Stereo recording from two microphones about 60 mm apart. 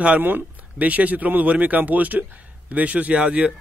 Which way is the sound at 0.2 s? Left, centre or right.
Right.